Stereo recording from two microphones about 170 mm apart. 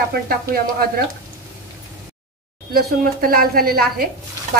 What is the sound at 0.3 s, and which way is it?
Speech, 60° right (ahead or behind).